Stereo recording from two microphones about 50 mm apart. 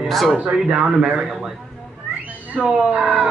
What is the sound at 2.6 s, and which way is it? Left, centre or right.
Speech, right.